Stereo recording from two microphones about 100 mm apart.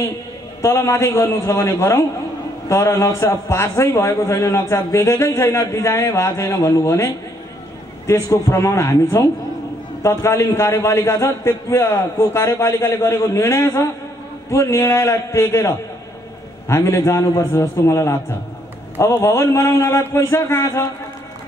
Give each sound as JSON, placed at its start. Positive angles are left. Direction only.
{"t": 0.6, "sound": "a man's voice", "side_deg": 25}